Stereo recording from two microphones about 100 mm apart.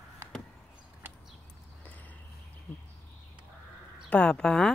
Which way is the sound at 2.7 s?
15° left (ahead or behind).